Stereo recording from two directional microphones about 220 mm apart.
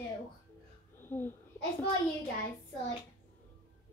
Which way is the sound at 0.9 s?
10° left (ahead or behind).